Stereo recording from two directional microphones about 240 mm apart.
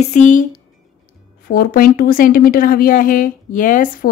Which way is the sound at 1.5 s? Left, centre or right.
Left.